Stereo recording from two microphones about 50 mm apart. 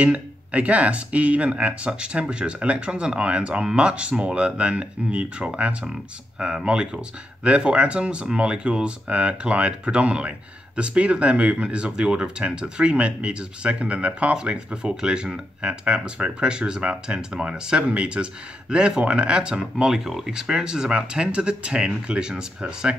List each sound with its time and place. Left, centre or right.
0.0 s speech: right